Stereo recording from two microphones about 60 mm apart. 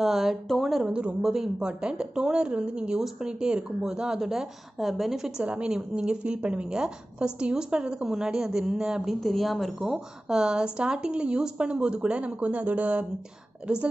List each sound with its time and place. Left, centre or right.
0.0 s speech: centre
0.8 s speech: centre
5.4 s a woman's voice: right